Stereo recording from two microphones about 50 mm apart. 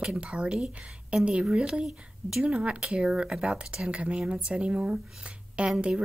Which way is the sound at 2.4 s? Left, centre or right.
Right.